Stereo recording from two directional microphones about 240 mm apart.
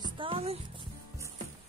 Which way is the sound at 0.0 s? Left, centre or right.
Right.